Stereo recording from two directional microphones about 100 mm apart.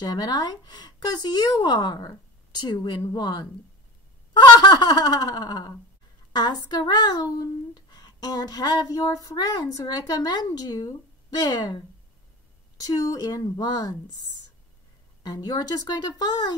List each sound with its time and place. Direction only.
0.0 s speech: 40° left (ahead or behind)
15.2 s speech: 40° left (ahead or behind)